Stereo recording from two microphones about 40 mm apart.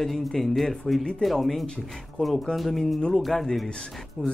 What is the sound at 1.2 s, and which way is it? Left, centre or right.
Speech, left.